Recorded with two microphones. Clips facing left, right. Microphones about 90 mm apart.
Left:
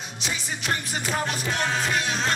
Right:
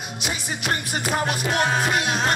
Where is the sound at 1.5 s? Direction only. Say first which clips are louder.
Right 6 dB; 55° right (ahead or behind).